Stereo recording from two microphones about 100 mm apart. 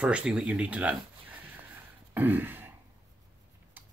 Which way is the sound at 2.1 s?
20° right (ahead or behind).